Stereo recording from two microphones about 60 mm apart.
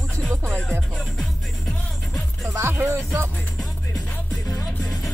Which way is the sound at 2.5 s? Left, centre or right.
Right.